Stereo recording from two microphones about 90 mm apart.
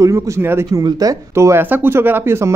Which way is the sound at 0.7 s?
45° right (ahead or behind).